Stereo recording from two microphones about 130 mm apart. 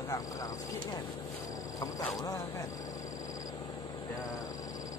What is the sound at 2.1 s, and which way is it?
Speech, 25° left (ahead or behind).